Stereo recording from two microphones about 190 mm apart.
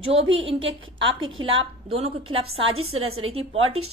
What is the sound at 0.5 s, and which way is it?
Speech, 90° right.